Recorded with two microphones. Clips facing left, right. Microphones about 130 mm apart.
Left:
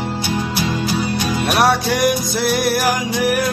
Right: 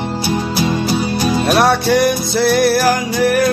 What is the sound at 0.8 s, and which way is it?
Music, 30° right (ahead or behind).